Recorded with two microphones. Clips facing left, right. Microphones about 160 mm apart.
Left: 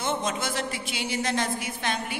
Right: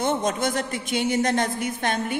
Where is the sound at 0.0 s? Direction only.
50° right (ahead or behind).